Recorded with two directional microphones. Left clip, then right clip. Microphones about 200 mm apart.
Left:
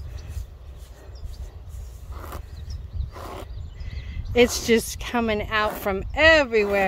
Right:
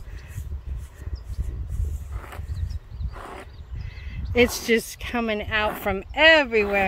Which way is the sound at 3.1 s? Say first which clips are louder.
Left 1 dB; 50° left (ahead or behind).